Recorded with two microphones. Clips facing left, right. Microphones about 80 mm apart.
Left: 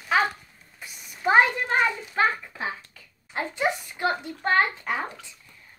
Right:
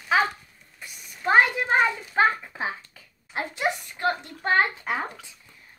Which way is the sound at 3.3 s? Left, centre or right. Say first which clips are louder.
Left 1 dB; centre.